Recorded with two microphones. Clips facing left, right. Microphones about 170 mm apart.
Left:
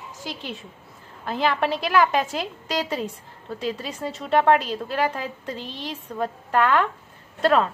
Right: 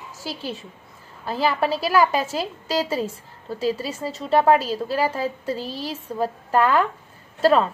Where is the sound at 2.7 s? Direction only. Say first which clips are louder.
Right 3 dB; 5° right (ahead or behind).